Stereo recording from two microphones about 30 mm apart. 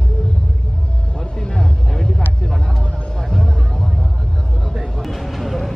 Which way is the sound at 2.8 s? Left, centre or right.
Left.